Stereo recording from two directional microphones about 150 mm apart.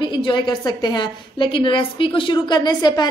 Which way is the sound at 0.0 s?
30° left (ahead or behind).